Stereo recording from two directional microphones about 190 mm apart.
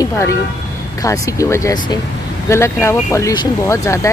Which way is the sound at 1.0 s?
15° left (ahead or behind).